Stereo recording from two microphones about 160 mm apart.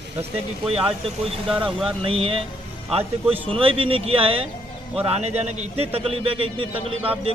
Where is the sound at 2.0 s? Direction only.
35° right (ahead or behind).